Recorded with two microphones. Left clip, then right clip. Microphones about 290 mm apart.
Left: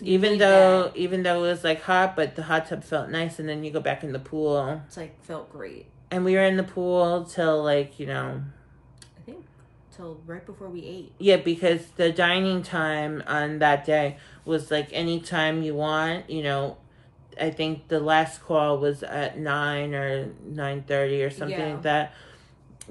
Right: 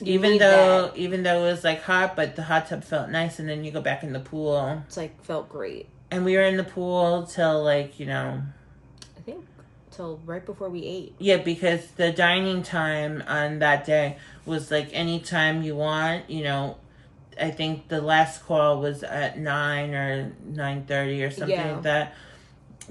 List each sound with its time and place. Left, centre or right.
0.1 s speech: centre
4.9 s speech: centre
6.0 s speech: centre
9.9 s speech: centre
11.2 s speech: centre